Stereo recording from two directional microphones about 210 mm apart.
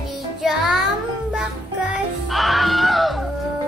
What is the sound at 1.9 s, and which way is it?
Music, centre (ahead or behind).